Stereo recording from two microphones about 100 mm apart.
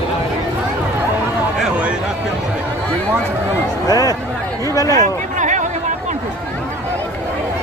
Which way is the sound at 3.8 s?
40° left (ahead or behind).